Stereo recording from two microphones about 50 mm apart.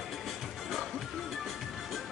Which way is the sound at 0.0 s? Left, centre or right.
Centre.